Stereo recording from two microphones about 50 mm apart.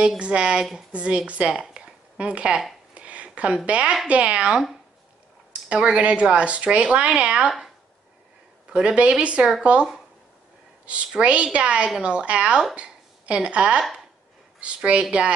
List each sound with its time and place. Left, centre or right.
0.2 s speech: right
1.7 s a sound: right
3.6 s speech: right
7.4 s speech: centre
8.6 s speech: centre
11.1 s speech: right